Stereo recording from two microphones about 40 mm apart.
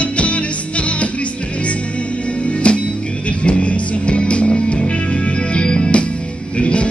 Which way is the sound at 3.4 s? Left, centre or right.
Left.